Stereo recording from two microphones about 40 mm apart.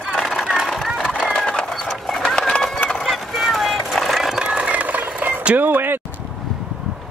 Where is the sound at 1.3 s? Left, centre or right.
Left.